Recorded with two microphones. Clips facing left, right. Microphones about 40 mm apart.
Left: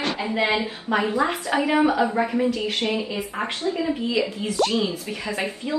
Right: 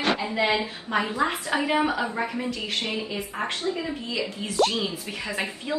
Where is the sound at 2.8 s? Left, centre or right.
Left.